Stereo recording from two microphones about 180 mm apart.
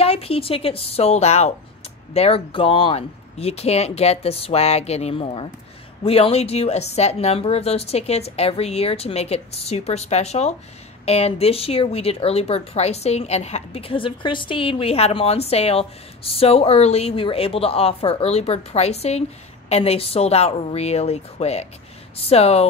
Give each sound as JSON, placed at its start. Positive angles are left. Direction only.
{"t": 0.0, "sound": "a woman's voice", "side_deg": 35}